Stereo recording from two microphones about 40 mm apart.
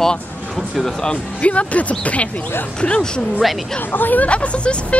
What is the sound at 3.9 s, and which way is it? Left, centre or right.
Speech, left.